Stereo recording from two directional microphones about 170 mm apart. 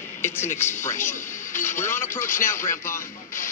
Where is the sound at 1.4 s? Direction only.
15° left (ahead or behind).